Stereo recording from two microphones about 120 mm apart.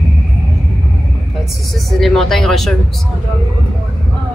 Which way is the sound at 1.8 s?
Centre (ahead or behind).